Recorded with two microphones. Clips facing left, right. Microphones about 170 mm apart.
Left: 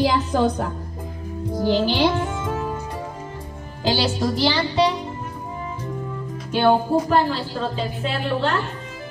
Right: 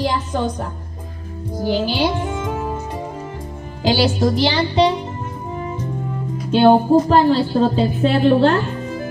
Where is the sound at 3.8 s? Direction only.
15° right (ahead or behind).